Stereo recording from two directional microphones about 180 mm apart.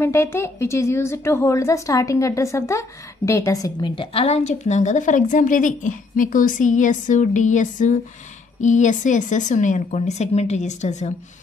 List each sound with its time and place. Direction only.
0.0 s a woman's voice: 15° left (ahead or behind); by 11.1 s 40° left (ahead or behind)